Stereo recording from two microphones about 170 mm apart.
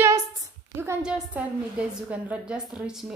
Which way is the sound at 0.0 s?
20° right (ahead or behind).